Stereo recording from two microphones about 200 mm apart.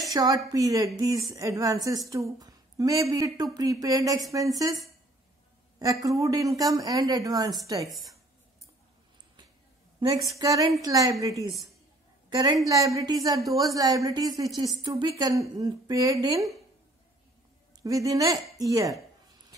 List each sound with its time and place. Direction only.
0.1 s a woman's voice: 20° right (ahead or behind)
5.8 s speech: 15° right (ahead or behind)
10.4 s a woman's voice: 20° right (ahead or behind)
17.8 s speech: 15° right (ahead or behind)